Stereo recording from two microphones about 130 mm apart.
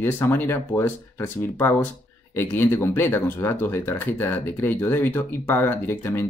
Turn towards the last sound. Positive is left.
turn(degrees=15)  # may be behind; listen again after turning